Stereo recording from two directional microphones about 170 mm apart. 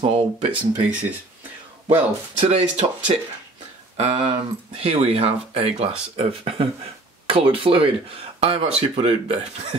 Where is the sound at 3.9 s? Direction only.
35° right (ahead or behind).